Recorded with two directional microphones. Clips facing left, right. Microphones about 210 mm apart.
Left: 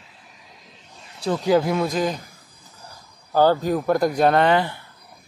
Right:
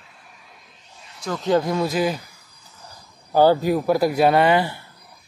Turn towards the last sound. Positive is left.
turn(degrees=-10)  # may be behind; listen again after turning